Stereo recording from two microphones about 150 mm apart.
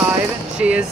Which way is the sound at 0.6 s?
5° right (ahead or behind).